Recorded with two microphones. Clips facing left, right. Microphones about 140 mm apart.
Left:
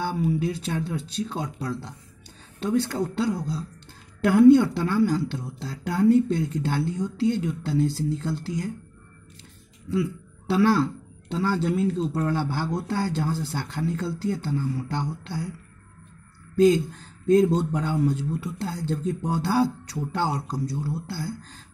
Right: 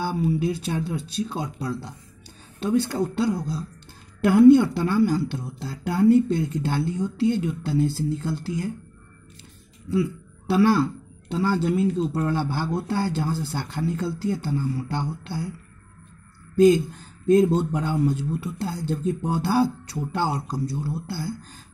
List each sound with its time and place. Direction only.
0.0 s a woman's voice: 10° right (ahead or behind)
9.8 s a woman's voice: 5° right (ahead or behind)
16.5 s a woman's voice: 10° right (ahead or behind)